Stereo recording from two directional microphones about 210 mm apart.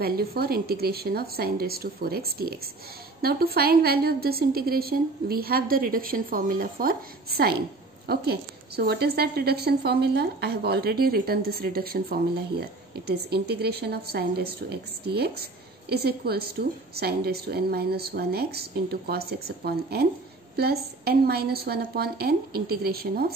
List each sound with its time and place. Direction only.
0.0 s a woman's voice: 45° right (ahead or behind)